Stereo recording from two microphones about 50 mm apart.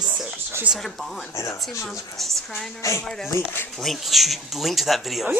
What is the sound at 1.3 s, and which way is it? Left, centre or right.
Speech, left.